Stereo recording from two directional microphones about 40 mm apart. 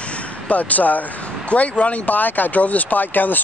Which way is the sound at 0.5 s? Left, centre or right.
Left.